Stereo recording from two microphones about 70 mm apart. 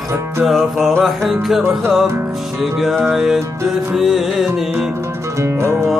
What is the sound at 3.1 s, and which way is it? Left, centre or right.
Music, centre.